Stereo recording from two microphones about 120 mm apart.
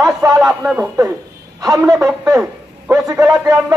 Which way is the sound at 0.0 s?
30° right (ahead or behind).